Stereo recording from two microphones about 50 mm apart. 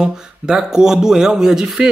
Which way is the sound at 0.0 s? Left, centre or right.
Centre.